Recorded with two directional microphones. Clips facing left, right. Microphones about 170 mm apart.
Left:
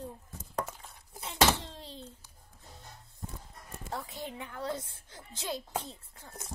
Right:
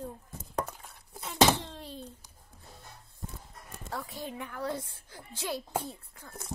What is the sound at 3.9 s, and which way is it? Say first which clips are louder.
A woman's voice: right 1 dB; 25° left (ahead or behind).